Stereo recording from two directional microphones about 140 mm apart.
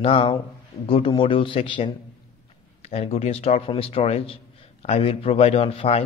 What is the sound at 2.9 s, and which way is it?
A man's voice, 50° left (ahead or behind).